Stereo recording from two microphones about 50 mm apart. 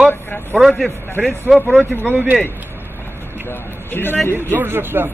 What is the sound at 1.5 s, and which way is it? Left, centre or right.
Speech, right.